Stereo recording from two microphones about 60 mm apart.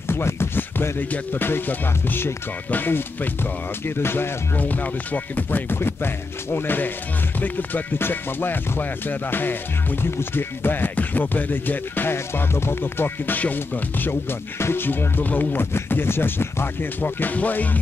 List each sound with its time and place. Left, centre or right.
0.1 s speech: left
4.6 s speech: left